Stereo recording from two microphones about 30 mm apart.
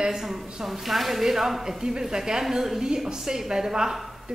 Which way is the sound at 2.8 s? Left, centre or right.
Right.